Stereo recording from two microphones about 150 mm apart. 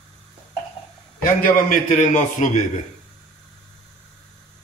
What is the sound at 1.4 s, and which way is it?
A man's voice, 60° left (ahead or behind).